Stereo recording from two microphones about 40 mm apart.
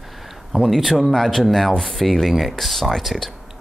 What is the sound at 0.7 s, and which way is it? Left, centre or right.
Speech, centre.